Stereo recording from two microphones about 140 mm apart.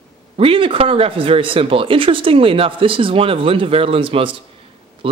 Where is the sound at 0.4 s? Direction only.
40° right (ahead or behind).